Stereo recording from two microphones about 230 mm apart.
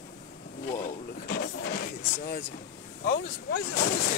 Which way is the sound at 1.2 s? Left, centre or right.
Left.